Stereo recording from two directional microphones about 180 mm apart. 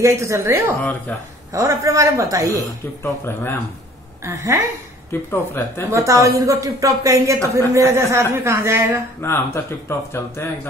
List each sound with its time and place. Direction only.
0.0 s speech: 15° right (ahead or behind)
3.0 s speech: 15° left (ahead or behind)
4.2 s speech: 15° right (ahead or behind)
5.3 s speech: 15° left (ahead or behind)
5.9 s speech: 15° right (ahead or behind)
9.2 s speech: 15° left (ahead or behind)